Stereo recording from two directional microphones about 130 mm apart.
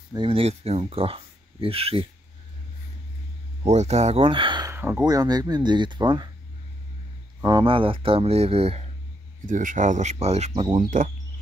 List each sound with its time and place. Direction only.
0.1 s speech: 45° right (ahead or behind)
3.6 s speech: 60° right (ahead or behind); by 4.6 s 40° right (ahead or behind)
4.6 s a sound: 15° right (ahead or behind)
5.0 s speech: 30° right (ahead or behind)
7.4 s speech: 40° right (ahead or behind)
9.5 s speech: 80° right
10.1 s speech: 55° right (ahead or behind)
10.8 s speech: 80° right